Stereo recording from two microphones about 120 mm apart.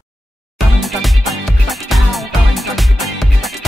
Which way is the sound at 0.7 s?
Centre (ahead or behind).